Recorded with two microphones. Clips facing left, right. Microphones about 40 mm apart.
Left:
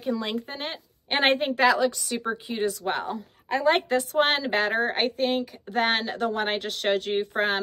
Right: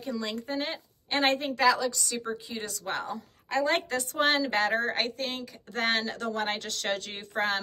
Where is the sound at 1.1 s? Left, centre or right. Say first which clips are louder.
Left 4 dB; left.